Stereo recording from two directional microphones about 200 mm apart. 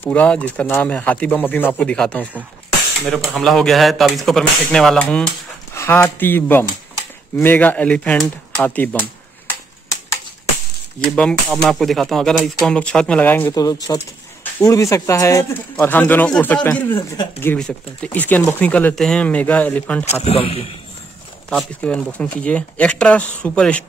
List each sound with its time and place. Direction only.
0.0 s speech: 5° left (ahead or behind)
11.1 s speech: 5° left (ahead or behind)
20.2 s speech: 30° left (ahead or behind)
21.5 s speech: 5° left (ahead or behind)